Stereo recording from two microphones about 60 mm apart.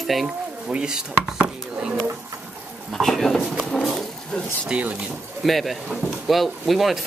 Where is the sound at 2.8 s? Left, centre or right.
Centre.